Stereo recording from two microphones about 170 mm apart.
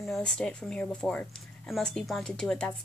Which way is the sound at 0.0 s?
Centre (ahead or behind).